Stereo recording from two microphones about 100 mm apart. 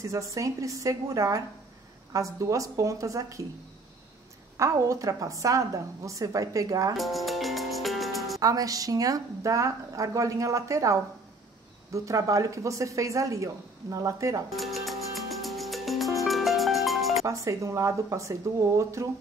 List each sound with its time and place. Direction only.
0.0 s a woman's voice: 35° right (ahead or behind)
4.6 s a woman's voice: 30° right (ahead or behind)
7.0 s music: centre (ahead or behind)
8.4 s a woman's voice: 35° right (ahead or behind)
14.5 s music: centre (ahead or behind)
17.3 s a woman's voice: 30° right (ahead or behind)